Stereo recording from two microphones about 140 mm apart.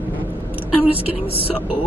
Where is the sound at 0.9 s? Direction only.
40° left (ahead or behind).